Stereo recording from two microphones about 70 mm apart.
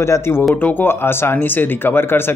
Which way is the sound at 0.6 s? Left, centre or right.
Left.